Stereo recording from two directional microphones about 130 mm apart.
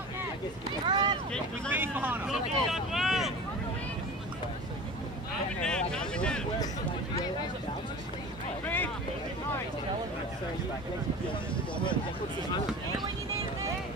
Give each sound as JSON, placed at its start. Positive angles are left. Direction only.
{"t": 0.8, "sound": "boat", "side_deg": -35}
{"t": 1.7, "sound": "speech", "side_deg": -15}
{"t": 2.2, "sound": "vehicle", "side_deg": 0}
{"t": 5.6, "sound": "a sound", "side_deg": 5}
{"t": 8.6, "sound": "speech", "side_deg": 15}